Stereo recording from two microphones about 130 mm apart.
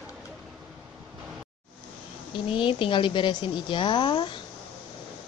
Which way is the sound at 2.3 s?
40° left (ahead or behind).